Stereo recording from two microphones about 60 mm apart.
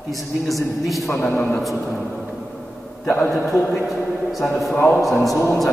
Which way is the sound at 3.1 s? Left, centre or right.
Left.